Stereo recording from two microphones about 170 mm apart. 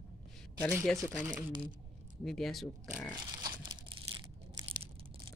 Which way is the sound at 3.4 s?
25° right (ahead or behind).